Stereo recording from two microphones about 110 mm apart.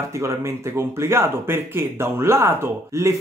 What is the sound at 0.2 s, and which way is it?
Speech, 25° right (ahead or behind).